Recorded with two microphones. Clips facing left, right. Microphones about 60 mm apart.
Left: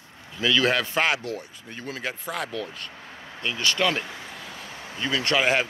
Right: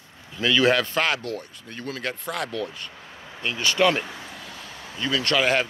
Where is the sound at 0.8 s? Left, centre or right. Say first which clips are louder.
Even; centre.